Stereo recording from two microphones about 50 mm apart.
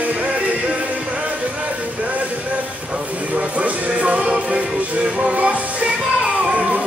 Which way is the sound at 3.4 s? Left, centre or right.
Right.